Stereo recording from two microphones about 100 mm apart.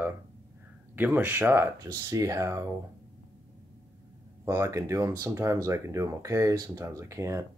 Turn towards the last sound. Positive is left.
turn(degrees=-30)  # may be behind; listen again after turning